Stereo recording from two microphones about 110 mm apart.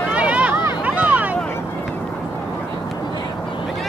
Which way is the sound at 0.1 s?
10° right (ahead or behind).